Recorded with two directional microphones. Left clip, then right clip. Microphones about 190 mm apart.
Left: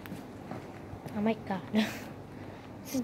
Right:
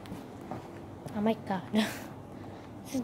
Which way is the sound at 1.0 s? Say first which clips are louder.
Right 1 dB; 5° right (ahead or behind).